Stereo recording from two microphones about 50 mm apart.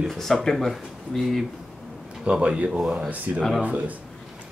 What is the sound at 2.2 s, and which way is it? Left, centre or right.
A man's voice, right.